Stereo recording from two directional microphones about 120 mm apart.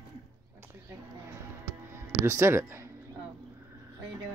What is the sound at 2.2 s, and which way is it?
Speech, 20° right (ahead or behind).